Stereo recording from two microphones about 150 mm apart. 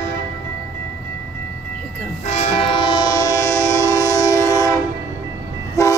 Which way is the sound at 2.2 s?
45° left (ahead or behind).